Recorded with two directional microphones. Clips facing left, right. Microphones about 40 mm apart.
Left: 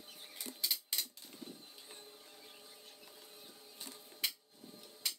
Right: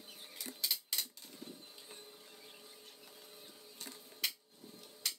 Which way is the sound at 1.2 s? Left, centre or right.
Centre.